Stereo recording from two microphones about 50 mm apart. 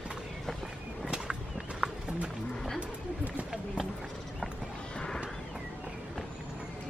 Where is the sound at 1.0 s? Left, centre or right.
Centre.